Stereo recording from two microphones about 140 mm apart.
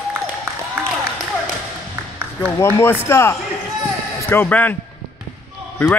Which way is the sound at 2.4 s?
15° left (ahead or behind).